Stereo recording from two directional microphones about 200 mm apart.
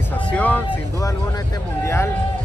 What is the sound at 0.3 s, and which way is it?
Speech, 5° left (ahead or behind).